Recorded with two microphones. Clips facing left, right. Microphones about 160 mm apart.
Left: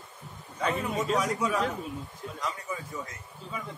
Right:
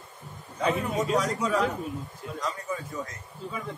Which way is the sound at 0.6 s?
5° right (ahead or behind).